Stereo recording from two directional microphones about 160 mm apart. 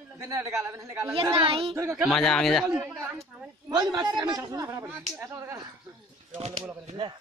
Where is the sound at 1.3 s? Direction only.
35° right (ahead or behind).